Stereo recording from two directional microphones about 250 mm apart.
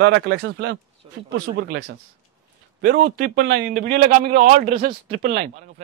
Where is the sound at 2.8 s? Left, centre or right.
Right.